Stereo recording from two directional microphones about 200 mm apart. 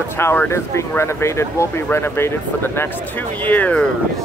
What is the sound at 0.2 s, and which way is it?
Speech, 10° left (ahead or behind).